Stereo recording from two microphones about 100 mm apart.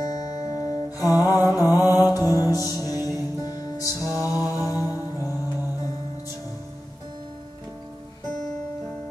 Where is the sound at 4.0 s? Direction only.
25° right (ahead or behind).